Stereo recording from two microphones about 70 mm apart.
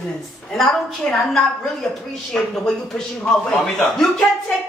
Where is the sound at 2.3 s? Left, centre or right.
Centre.